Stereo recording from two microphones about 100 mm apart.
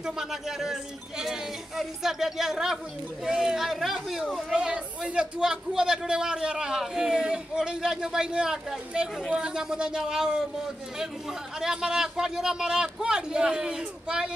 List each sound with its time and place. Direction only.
0.0 s speech: 5° right (ahead or behind)
11.6 s speech: 5° right (ahead or behind)